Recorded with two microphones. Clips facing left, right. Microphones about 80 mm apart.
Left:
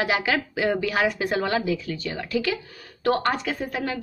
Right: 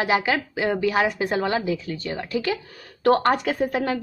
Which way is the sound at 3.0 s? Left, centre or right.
Right.